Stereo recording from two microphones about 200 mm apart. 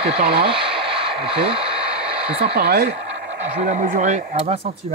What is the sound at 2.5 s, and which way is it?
Speech, 55° right (ahead or behind).